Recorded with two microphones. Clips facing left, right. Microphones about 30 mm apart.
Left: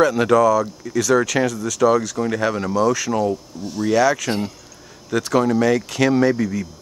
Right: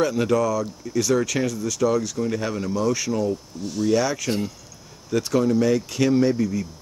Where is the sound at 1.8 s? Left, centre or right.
Left.